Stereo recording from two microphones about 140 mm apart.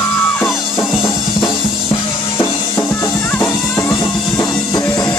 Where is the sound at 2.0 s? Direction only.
20° left (ahead or behind).